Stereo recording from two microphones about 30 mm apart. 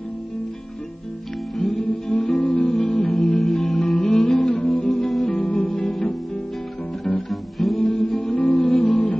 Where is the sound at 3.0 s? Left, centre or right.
Left.